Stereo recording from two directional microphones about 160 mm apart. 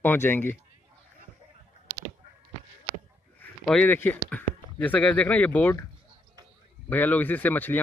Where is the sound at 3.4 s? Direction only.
10° left (ahead or behind).